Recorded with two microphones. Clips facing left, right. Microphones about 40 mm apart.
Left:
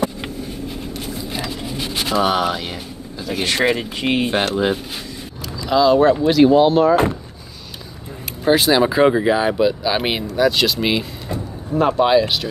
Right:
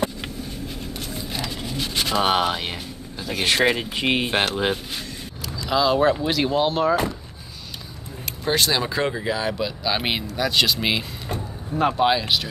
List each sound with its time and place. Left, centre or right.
0.2 s vehicle: centre
1.4 s a sound: centre
2.2 s speech: centre
3.3 s speech: centre
8.5 s speech: centre